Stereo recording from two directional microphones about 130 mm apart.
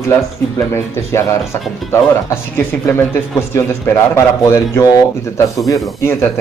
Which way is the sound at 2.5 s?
20° left (ahead or behind).